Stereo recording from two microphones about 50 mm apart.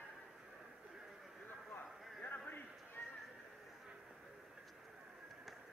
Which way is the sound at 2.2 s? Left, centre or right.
Left.